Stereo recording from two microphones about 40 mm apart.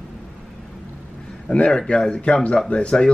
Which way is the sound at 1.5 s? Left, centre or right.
Left.